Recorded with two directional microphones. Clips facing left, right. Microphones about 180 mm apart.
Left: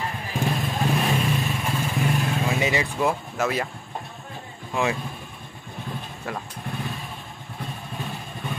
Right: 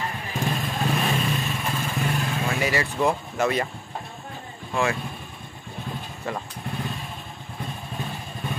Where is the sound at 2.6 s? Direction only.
20° left (ahead or behind).